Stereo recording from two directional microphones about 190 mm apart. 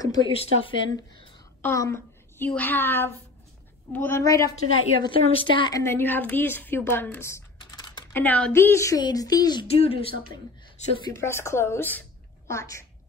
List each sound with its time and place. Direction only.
0.0 s a woman's voice: 20° left (ahead or behind)
1.6 s a woman's voice: 15° left (ahead or behind)
4.5 s a woman's voice: 90° left
5.0 s a woman's voice: 25° left (ahead or behind)
8.2 s a woman's voice: 5° left (ahead or behind); by 10.1 s 30° left (ahead or behind)
11.1 s a woman's voice: 15° left (ahead or behind)